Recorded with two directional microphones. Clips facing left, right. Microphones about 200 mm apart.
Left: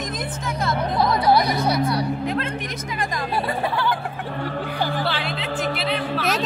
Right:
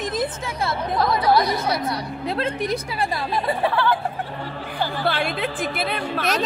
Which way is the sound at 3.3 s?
15° left (ahead or behind).